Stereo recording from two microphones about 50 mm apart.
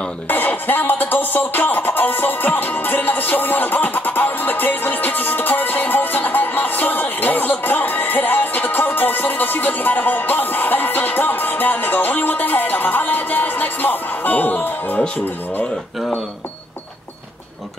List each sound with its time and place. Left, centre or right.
0.3 s music: left